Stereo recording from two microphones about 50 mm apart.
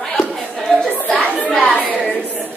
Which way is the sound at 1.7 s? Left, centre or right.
Right.